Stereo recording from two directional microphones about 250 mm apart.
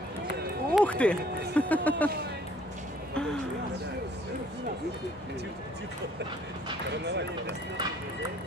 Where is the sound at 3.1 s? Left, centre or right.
Centre.